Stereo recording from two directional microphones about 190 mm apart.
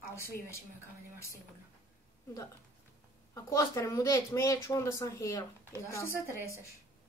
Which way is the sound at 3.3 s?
15° left (ahead or behind).